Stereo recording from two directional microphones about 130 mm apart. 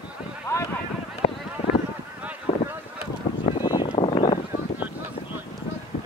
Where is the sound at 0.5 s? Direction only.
25° left (ahead or behind).